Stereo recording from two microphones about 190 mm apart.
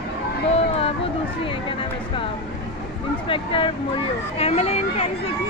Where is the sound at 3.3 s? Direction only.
25° left (ahead or behind).